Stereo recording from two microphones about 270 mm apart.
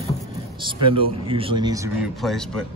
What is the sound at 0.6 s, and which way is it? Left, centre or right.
A man's voice, centre.